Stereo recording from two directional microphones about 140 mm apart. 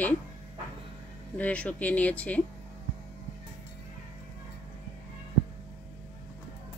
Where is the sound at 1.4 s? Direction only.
10° left (ahead or behind).